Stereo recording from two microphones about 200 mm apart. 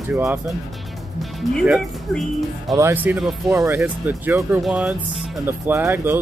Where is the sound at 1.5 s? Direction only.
Centre (ahead or behind).